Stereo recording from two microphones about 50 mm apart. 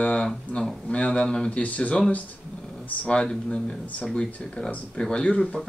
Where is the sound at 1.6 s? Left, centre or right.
Left.